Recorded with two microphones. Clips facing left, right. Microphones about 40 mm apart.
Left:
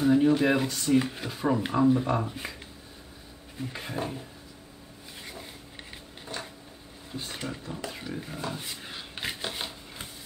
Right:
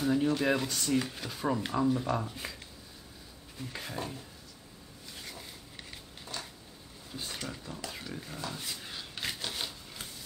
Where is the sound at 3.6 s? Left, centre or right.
Centre.